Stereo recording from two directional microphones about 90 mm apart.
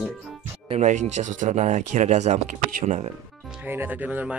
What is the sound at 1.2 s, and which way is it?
Speech, 90° right.